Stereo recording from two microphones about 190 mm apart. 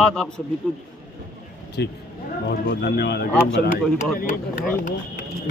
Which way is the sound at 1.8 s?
60° left (ahead or behind).